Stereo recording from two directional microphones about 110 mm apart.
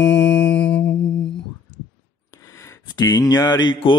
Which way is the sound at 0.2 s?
10° left (ahead or behind).